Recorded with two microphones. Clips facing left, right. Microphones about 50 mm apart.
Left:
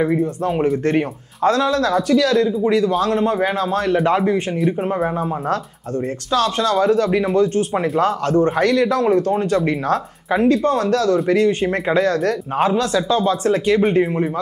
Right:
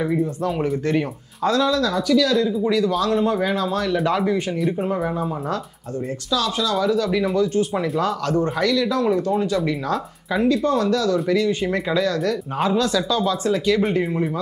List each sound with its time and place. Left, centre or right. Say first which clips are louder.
0.8 s speech: left 3 dB; left
4.6 s speech: left 3 dB; centre
4.8 s speech: left 3 dB; left
6.3 s speech: left 4 dB; left